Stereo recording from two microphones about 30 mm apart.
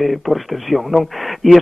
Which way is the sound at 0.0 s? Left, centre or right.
Centre.